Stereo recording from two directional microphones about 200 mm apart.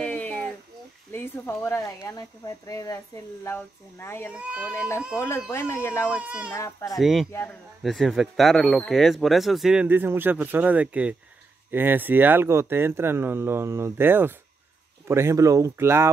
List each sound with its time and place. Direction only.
0.0 s a sound: 5° left (ahead or behind)
1.1 s speech: 10° left (ahead or behind)
4.3 s speech: 5° right (ahead or behind)
5.5 s speech: 15° left (ahead or behind)
6.0 s speech: 5° right (ahead or behind)
6.5 s speech: 15° left (ahead or behind)
7.0 s speech: centre (ahead or behind)